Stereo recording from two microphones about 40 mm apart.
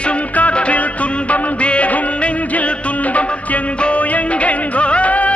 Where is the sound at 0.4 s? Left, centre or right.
Left.